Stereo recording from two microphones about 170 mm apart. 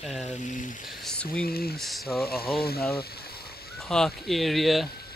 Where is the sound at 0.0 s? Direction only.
Centre (ahead or behind).